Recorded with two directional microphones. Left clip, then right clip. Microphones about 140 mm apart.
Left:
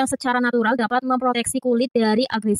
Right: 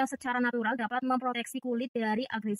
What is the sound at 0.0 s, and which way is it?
A woman's voice, 50° left (ahead or behind).